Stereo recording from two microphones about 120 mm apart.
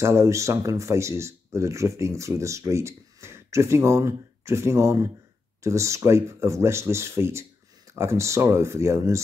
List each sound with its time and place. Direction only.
0.0 s speech: 25° right (ahead or behind)